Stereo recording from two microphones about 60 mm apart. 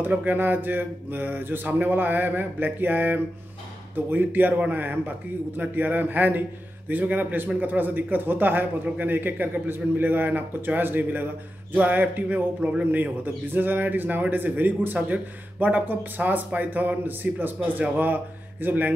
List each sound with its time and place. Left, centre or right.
0.0 s a man's voice: right